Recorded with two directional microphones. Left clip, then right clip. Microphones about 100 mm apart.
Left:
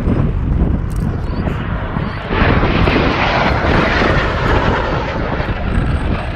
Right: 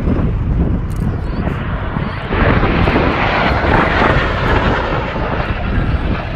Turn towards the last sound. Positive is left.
turn(degrees=25)  # may be behind; listen again after turning